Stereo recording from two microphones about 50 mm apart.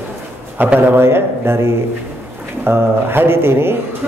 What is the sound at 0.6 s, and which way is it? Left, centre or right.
Speech, right.